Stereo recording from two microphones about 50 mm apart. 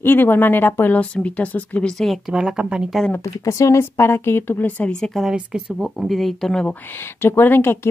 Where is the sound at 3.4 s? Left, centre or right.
Left.